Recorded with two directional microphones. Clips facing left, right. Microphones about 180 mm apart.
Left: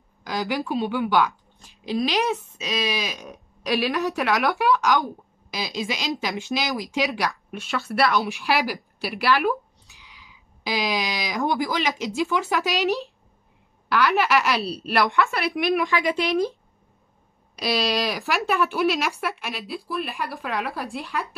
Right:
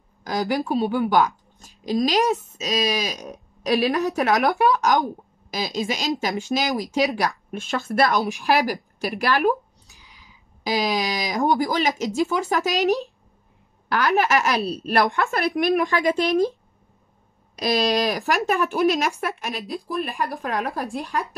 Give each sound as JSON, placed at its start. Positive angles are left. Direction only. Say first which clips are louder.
{"t": 0.2, "sound": "a woman's voice", "louder": "right 3 dB", "side_deg": -45}
{"t": 17.6, "sound": "a woman's voice", "louder": "right 3 dB", "side_deg": -45}